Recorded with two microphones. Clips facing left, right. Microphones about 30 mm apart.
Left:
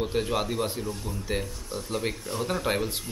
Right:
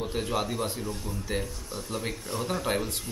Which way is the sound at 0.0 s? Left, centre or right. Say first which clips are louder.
Left 3 dB; centre.